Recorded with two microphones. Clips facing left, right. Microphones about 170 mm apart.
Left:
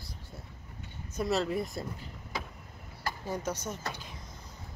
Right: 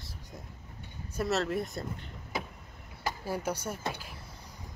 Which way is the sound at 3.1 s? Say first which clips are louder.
Right 1 dB; 10° right (ahead or behind).